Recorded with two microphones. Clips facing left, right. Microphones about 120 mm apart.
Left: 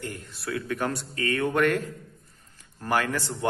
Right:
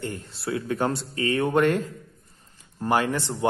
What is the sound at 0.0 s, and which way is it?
A man's voice, 30° right (ahead or behind).